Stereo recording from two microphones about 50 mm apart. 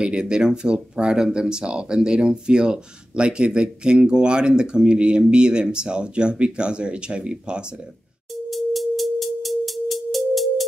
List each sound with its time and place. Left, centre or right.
0.0 s speech: centre
8.5 s music: centre